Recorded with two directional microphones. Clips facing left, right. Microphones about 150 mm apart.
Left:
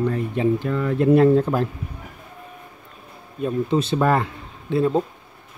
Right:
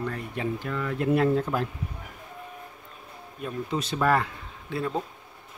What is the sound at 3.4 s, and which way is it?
Speech, 25° left (ahead or behind).